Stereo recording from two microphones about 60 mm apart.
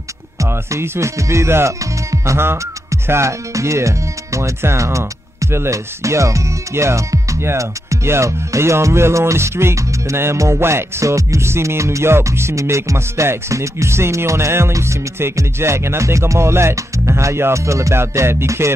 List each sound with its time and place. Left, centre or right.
0.4 s speech: right
7.5 s music: right
10.3 s music: right
10.6 s music: right